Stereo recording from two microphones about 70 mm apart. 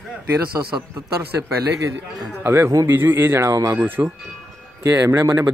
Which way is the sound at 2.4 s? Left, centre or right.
Right.